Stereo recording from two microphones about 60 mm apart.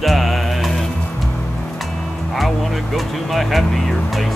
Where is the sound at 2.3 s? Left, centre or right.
Centre.